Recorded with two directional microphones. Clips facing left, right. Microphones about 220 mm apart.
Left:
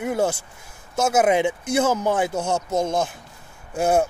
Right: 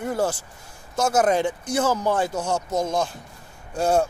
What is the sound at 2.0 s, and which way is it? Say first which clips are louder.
Speech: left 1 dB; 20° left (ahead or behind).